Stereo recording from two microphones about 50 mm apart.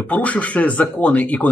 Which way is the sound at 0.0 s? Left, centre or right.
Left.